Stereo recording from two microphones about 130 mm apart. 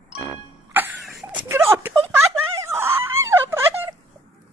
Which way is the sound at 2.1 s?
20° right (ahead or behind).